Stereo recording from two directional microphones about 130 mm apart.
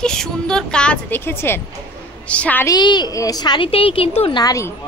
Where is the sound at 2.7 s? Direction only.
35° left (ahead or behind).